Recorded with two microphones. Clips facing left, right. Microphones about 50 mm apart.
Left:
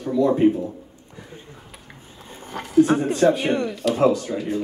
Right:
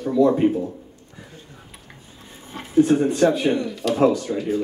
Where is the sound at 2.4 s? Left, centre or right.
Left.